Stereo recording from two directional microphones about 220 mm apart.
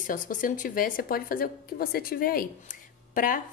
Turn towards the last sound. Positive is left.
turn(degrees=40)  # may be behind; listen again after turning